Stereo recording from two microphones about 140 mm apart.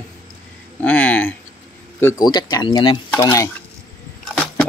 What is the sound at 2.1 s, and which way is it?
Speech, 30° left (ahead or behind).